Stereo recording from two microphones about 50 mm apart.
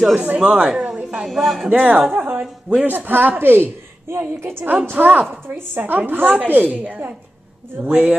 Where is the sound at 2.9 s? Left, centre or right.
Right.